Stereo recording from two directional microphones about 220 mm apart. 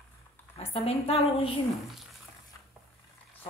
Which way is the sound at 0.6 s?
25° left (ahead or behind).